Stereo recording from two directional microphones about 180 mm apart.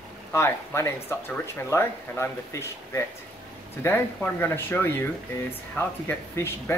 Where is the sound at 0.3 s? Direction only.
15° left (ahead or behind).